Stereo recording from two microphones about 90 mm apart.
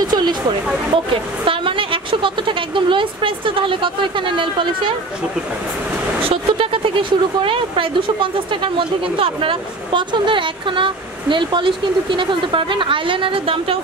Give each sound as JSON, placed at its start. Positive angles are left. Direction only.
{"t": 0.0, "sound": "a sound", "side_deg": -50}
{"t": 1.4, "sound": "a woman's voice", "side_deg": -70}
{"t": 6.2, "sound": "speech", "side_deg": -85}